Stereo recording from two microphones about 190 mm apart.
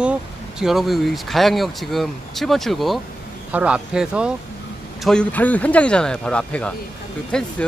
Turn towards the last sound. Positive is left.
turn(degrees=5)  # may be behind; listen again after turning